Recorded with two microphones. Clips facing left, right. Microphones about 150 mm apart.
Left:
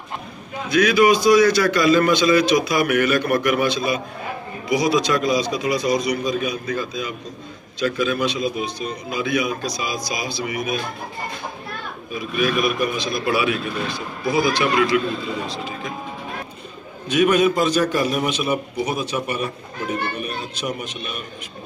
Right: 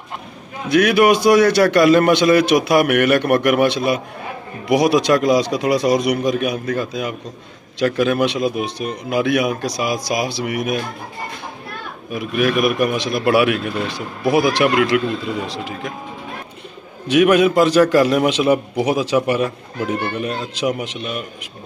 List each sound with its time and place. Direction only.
0.7 s a man's voice: 65° right (ahead or behind)
12.1 s a man's voice: 70° right (ahead or behind)
17.1 s a man's voice: 80° right